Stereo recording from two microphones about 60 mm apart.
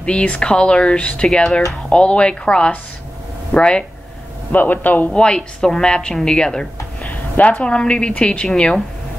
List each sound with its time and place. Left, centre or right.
0.0 s a woman's voice: centre
4.5 s a man's voice: left
5.1 s a woman's voice: centre
7.0 s a woman's voice: left
8.5 s speech: centre